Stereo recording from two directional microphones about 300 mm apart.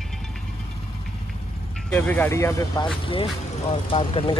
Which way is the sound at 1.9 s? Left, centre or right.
Centre.